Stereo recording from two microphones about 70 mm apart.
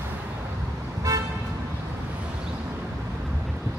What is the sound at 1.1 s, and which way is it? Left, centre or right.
Toot, right.